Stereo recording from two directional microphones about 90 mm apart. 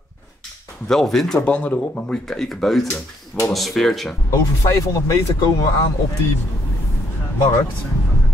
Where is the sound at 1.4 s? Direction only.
15° left (ahead or behind).